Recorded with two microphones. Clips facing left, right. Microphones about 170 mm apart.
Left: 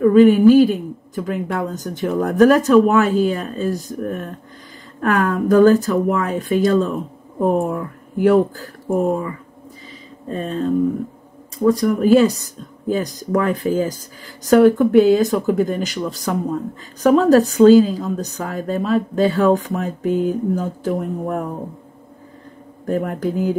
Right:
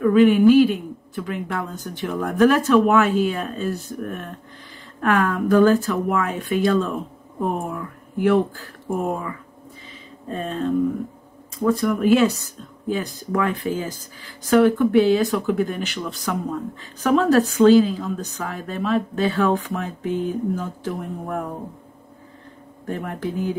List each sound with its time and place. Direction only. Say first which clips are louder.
0.0 s speech: left 4 dB; 40° left (ahead or behind)
10.3 s speech: left 3 dB; 35° left (ahead or behind)
22.8 s speech: left 6 dB; 40° left (ahead or behind)